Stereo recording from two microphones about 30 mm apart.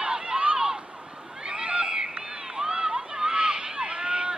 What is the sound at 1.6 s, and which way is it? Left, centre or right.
Run, right.